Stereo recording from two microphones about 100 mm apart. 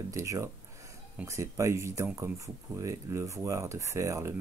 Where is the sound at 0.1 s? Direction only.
30° right (ahead or behind).